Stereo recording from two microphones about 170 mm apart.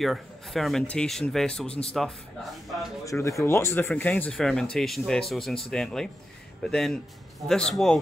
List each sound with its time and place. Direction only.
0.0 s speech: centre (ahead or behind)
1.7 s speech: 35° left (ahead or behind)
2.0 s speech: centre (ahead or behind)
3.1 s speech: 20° left (ahead or behind); by 8.0 s centre (ahead or behind)